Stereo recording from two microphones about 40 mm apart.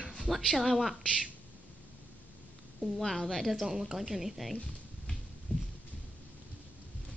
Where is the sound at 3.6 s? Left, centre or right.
Centre.